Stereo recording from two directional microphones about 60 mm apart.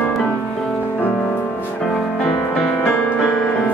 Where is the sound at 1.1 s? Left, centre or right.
Centre.